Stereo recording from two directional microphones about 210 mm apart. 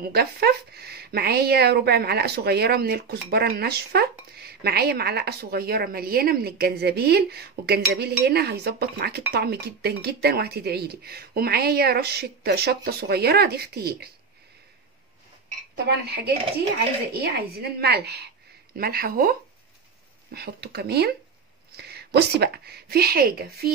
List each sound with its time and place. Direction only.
0.1 s a woman's voice: 50° right (ahead or behind)
15.7 s a woman's voice: 50° right (ahead or behind)
20.3 s a woman's voice: 50° right (ahead or behind)